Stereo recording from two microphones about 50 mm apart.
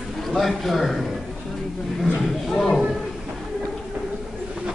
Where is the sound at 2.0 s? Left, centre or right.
Centre.